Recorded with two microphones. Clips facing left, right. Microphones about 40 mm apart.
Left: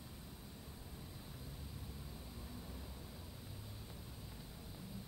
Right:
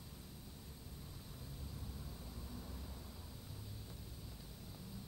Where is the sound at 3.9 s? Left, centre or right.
Centre.